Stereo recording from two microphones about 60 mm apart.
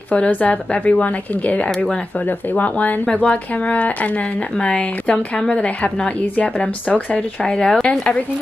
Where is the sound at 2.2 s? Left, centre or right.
Left.